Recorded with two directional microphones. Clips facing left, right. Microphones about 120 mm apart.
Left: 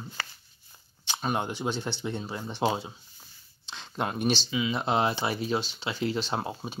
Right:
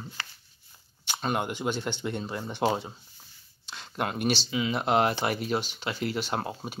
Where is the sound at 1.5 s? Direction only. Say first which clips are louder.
Right 1 dB; 15° right (ahead or behind).